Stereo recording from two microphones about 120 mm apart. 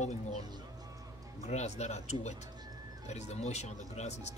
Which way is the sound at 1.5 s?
70° left (ahead or behind).